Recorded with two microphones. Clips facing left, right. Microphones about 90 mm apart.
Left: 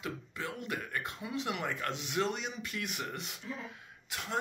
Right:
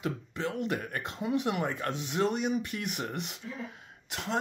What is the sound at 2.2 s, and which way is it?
Speech, 50° right (ahead or behind).